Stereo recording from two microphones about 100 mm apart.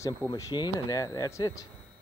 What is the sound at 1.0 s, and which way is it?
Speech, 30° left (ahead or behind).